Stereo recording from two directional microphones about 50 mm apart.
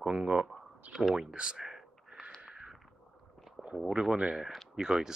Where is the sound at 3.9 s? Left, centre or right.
Centre.